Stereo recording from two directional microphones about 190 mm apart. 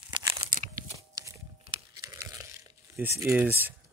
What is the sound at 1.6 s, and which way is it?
Tearing, 25° right (ahead or behind).